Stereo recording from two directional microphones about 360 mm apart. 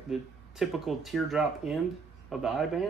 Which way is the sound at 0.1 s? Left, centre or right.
Centre.